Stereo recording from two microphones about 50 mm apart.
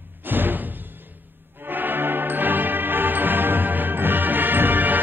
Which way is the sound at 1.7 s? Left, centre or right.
Right.